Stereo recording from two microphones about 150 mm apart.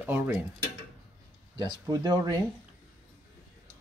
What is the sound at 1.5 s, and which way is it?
Speech, 25° right (ahead or behind).